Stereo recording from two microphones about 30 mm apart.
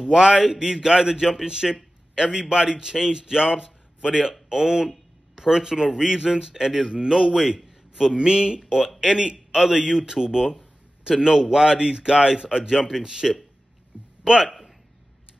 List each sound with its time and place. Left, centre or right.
0.0 s a man's voice: right